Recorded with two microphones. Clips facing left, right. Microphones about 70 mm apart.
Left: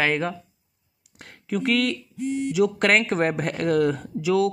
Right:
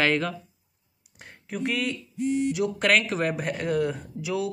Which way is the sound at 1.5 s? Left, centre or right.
Left.